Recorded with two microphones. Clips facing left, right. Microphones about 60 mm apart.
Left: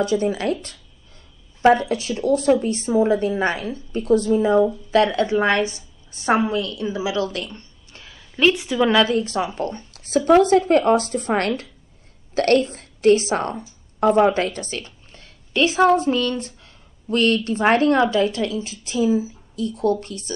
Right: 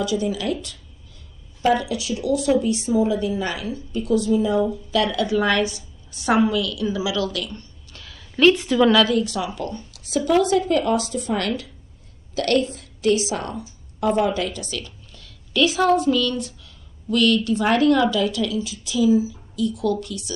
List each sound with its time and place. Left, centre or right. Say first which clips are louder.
0.0 s a woman's voice: left 3 dB; left
8.4 s a woman's voice: right 2 dB; centre
8.8 s a woman's voice: even; left